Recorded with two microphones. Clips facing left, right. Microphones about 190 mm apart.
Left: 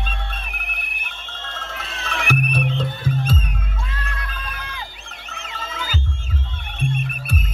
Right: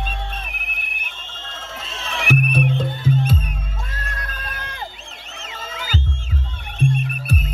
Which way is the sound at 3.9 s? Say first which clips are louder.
Even; 45° right (ahead or behind).